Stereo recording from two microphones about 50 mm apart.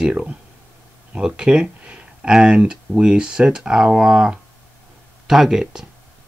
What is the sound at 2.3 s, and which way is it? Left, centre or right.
Speech, centre.